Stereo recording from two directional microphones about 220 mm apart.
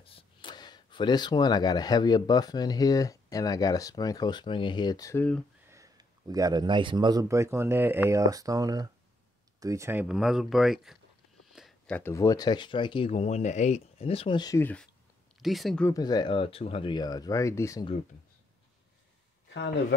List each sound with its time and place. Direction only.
0.0 s speech: 25° left (ahead or behind)
5.7 s a man's voice: 15° right (ahead or behind)
11.5 s a sound: centre (ahead or behind)
12.0 s speech: 15° left (ahead or behind)
15.9 s speech: 20° left (ahead or behind)